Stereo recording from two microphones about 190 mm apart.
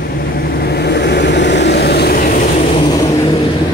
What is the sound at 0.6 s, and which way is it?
Vehicle, 60° left (ahead or behind).